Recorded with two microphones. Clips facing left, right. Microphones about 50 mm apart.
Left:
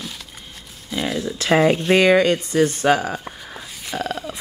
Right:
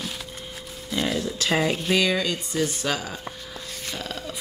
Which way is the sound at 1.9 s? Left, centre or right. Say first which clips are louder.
Left 9 dB; left.